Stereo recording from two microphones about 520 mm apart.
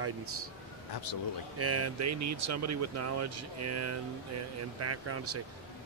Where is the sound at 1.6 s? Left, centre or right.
Right.